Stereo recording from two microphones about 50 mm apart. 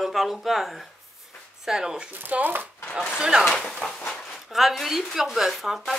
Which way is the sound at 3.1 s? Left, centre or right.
Centre.